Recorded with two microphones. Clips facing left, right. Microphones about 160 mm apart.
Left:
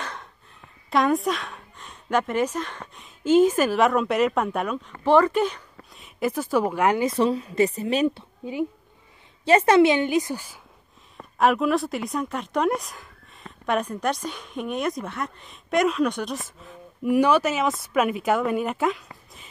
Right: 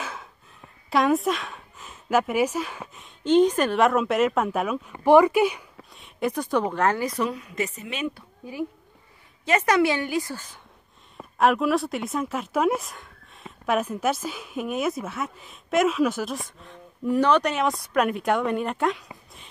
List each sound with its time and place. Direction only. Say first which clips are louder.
0.0 s a sound: even; 5° right (ahead or behind)
0.8 s speech: even; centre (ahead or behind)
7.1 s a woman's voice: left 5 dB; 30° left (ahead or behind)
8.5 s a woman's voice: left 4 dB; 20° left (ahead or behind)
11.1 s speech: even; centre (ahead or behind)